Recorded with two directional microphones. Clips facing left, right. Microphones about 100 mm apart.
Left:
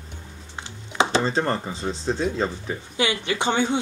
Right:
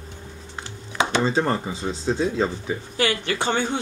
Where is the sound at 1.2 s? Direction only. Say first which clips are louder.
Right 2 dB; 5° right (ahead or behind).